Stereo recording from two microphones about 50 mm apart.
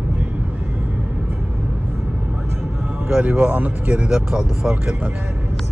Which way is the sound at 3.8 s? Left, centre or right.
Centre.